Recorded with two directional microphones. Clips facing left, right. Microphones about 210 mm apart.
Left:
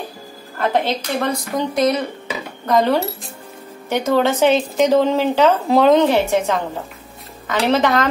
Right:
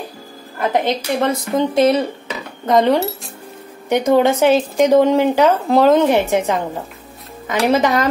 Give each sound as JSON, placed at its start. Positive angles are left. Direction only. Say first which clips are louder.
{"t": 0.6, "sound": "a woman's voice", "louder": "right 1 dB", "side_deg": -20}
{"t": 5.7, "sound": "speech", "louder": "even", "side_deg": -5}
{"t": 6.3, "sound": "a woman's voice", "louder": "right 1 dB", "side_deg": -15}